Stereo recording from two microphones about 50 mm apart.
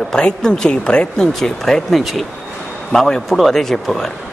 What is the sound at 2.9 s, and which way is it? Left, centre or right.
A man's voice, centre.